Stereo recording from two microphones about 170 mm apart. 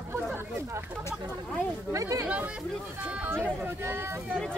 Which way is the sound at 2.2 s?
5° right (ahead or behind).